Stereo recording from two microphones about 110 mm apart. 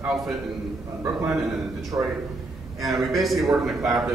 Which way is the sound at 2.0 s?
15° right (ahead or behind).